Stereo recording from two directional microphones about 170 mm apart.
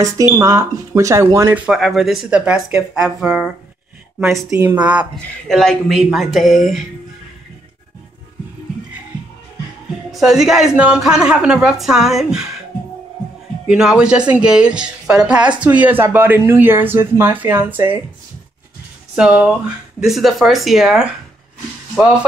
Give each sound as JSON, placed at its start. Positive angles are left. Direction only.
{"t": 0.4, "sound": "a woman's voice", "side_deg": -20}
{"t": 1.7, "sound": "speech", "side_deg": 0}
{"t": 4.5, "sound": "a woman's voice", "side_deg": -15}
{"t": 5.1, "sound": "speech", "side_deg": 5}
{"t": 10.1, "sound": "speech", "side_deg": -5}
{"t": 13.7, "sound": "a woman's voice", "side_deg": -5}
{"t": 19.1, "sound": "a woman's voice", "side_deg": -5}